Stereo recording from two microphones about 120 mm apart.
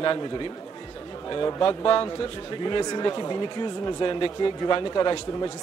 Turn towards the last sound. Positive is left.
turn(degrees=35)  # may be behind; listen again after turning